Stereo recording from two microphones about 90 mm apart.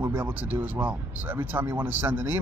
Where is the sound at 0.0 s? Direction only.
20° right (ahead or behind).